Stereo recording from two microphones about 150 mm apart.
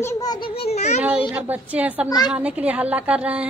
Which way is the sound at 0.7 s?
50° left (ahead or behind).